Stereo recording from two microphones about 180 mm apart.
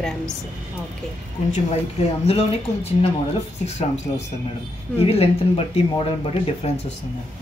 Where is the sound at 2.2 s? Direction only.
35° left (ahead or behind).